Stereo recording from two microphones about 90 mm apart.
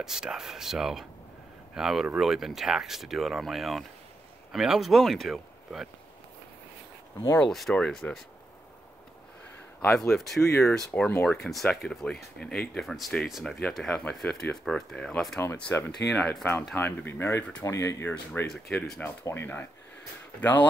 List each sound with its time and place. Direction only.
0.0 s speech: 5° right (ahead or behind)
7.3 s speech: 5° left (ahead or behind)
9.8 s speech: 5° left (ahead or behind)
10.9 s speech: 25° left (ahead or behind)
11.2 s speech: 5° left (ahead or behind)
15.7 s speech: 30° left (ahead or behind)
16.1 s speech: 10° left (ahead or behind)
16.7 s speech: 25° left (ahead or behind)